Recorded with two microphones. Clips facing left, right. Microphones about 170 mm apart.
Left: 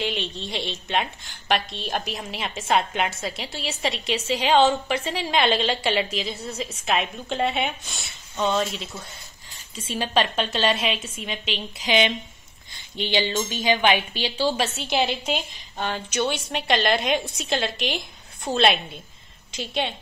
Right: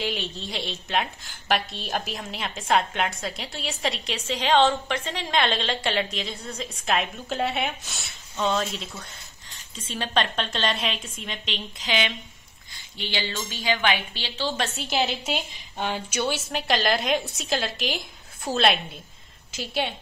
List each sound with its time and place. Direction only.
0.0 s a woman's voice: centre (ahead or behind)
12.7 s a woman's voice: 20° left (ahead or behind)
14.7 s a woman's voice: centre (ahead or behind)
15.8 s a woman's voice: 10° right (ahead or behind)